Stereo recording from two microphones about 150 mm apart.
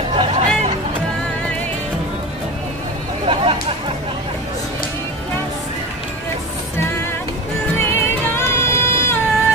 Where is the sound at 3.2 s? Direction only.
35° right (ahead or behind).